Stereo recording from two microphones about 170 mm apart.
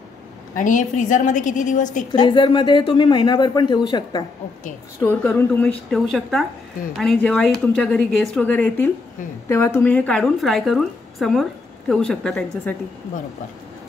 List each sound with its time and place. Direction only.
0.6 s a woman's voice: 50° left (ahead or behind)
2.1 s speech: 30° left (ahead or behind)
5.0 s a woman's voice: 10° left (ahead or behind)